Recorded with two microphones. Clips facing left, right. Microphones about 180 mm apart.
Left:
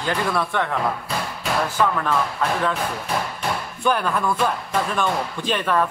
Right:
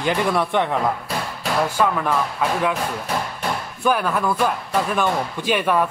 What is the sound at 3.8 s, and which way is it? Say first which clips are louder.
Speech: right 1 dB; 5° right (ahead or behind).